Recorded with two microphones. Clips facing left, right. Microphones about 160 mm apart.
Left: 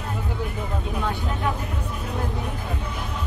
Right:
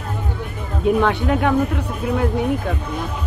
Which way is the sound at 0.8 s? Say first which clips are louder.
Right 15 dB; 75° right (ahead or behind).